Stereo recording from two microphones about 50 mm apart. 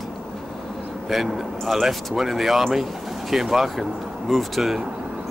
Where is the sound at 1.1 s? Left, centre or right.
Centre.